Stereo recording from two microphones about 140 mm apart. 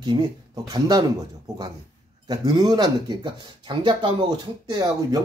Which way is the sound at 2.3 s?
25° right (ahead or behind).